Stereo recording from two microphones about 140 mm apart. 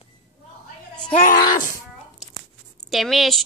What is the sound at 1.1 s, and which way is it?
Speech, 75° left (ahead or behind).